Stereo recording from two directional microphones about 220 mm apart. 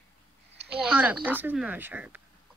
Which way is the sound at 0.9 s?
5° right (ahead or behind).